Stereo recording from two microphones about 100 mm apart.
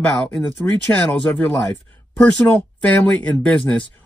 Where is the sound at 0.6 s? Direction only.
15° left (ahead or behind).